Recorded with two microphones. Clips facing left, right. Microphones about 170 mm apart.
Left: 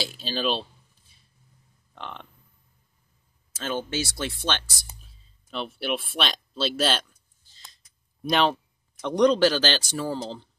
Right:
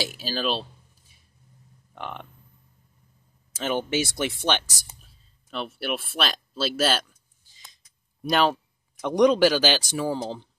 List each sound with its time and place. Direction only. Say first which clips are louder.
0.0 s speech: even; 10° right (ahead or behind)
2.0 s frog: right 3 dB; 15° right (ahead or behind)
3.6 s speech: right 4 dB; 20° right (ahead or behind)
5.0 s a sound: even; centre (ahead or behind)
9.0 s speech: right 1 dB; 10° right (ahead or behind)